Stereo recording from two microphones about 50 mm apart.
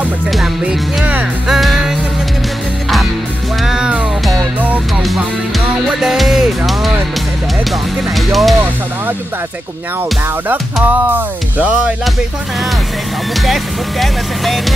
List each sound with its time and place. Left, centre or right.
1.5 s music: centre
3.6 s music: centre
5.9 s music: centre
8.3 s speech: centre
10.5 s music: right
13.5 s speech: centre